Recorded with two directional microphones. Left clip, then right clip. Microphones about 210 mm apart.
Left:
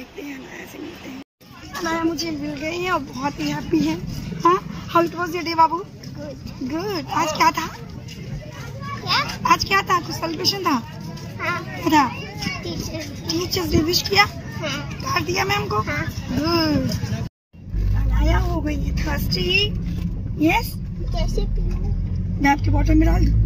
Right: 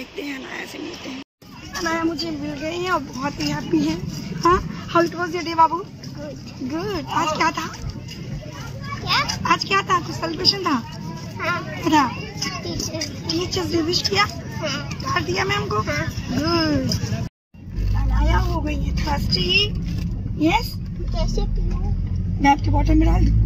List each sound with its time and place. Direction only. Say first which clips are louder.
1.8 s speech: even; 10° left (ahead or behind)
6.7 s speech: even; 15° left (ahead or behind)
9.0 s speech: even; 10° left (ahead or behind)
15.8 s speech: right 1 dB; 5° left (ahead or behind)
16.4 s speech: even; 20° left (ahead or behind)
18.2 s speech: even; 5° left (ahead or behind)
21.1 s speech: even; 10° left (ahead or behind)